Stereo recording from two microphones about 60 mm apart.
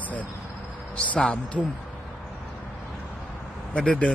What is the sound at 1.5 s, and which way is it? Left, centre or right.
Speech, centre.